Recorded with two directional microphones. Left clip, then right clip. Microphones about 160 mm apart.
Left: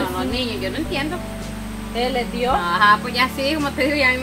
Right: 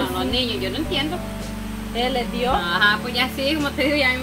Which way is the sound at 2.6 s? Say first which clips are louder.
Left 6 dB; 20° left (ahead or behind).